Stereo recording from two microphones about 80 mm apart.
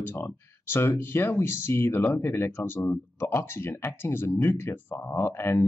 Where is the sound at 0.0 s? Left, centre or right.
Left.